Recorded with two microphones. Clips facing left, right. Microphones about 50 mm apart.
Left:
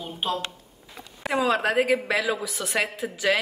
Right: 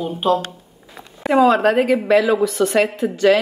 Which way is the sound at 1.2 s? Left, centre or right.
Centre.